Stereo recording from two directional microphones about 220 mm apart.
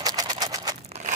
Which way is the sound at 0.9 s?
30° right (ahead or behind).